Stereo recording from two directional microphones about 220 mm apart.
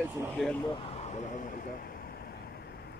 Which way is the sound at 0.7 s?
25° left (ahead or behind).